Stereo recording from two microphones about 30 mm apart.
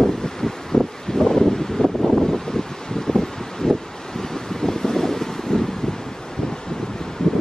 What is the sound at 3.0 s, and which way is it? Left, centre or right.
Wind, centre.